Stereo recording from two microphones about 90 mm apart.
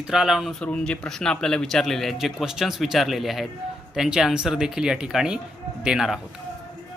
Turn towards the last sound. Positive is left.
turn(degrees=-5)  # may be behind; listen again after turning